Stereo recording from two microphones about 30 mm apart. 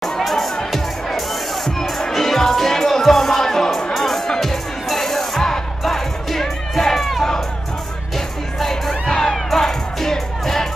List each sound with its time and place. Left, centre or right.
1.8 s music: centre
7.1 s crowd: centre
8.5 s crowd: centre
9.0 s crowd: centre
9.3 s music: centre